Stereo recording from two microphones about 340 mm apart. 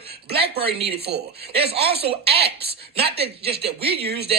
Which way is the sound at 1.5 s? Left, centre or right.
Centre.